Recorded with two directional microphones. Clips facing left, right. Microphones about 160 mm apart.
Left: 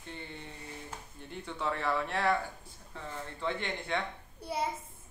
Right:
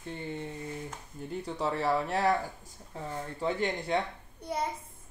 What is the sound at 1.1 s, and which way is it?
Speech, 35° right (ahead or behind).